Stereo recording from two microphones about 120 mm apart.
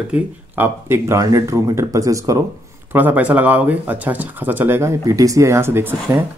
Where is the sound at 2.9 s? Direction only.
15° right (ahead or behind).